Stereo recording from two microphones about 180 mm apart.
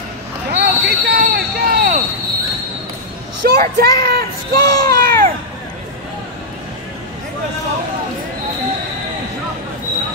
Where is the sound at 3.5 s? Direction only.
60° right (ahead or behind).